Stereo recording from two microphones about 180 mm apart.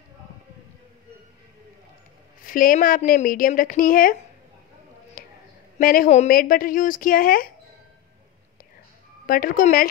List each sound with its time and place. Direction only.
2.4 s a woman's voice: 50° left (ahead or behind)
5.2 s a sound: 50° left (ahead or behind)
5.8 s a woman's voice: 50° left (ahead or behind)
9.2 s a woman's voice: 50° left (ahead or behind)